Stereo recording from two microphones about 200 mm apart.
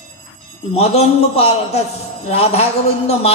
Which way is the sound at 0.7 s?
30° left (ahead or behind).